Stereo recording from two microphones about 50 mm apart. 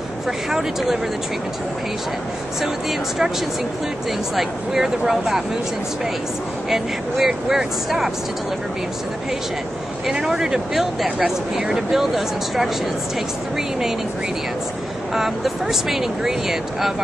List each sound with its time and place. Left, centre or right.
0.5 s speech: centre
2.6 s speech: centre
4.4 s speech: centre
6.7 s speech: centre
10.1 s speech: centre
15.1 s speech: centre